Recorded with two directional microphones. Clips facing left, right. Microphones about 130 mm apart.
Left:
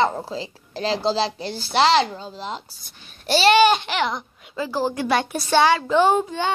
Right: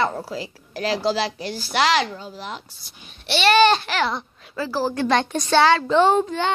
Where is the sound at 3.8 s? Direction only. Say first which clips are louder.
Even; 20° left (ahead or behind).